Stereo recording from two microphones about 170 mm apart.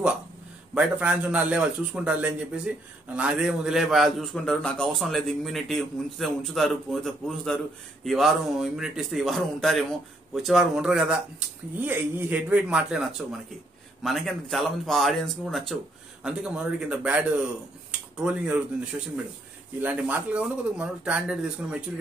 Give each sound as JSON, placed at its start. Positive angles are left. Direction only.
{"t": 0.7, "sound": "a man's voice", "side_deg": -5}